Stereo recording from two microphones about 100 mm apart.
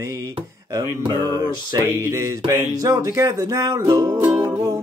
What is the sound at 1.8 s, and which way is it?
Music, 30° right (ahead or behind).